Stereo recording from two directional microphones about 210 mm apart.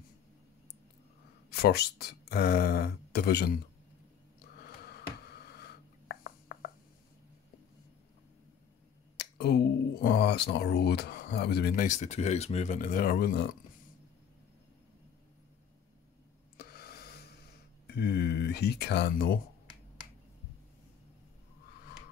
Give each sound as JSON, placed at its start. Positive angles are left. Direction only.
{"t": 1.5, "sound": "speech", "side_deg": 50}
{"t": 4.8, "sound": "a sound", "side_deg": 50}
{"t": 9.1, "sound": "finger snapping", "side_deg": 50}
{"t": 10.0, "sound": "speech", "side_deg": 50}
{"t": 16.5, "sound": "a sound", "side_deg": 50}
{"t": 17.8, "sound": "speech", "side_deg": 50}